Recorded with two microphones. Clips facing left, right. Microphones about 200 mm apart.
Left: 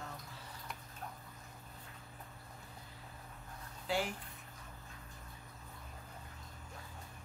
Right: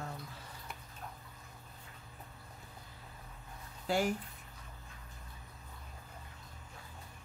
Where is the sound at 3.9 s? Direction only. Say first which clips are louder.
Right 5 dB; 45° right (ahead or behind).